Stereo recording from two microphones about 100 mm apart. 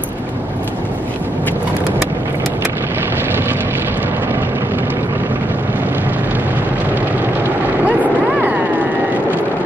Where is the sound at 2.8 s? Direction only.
20° right (ahead or behind).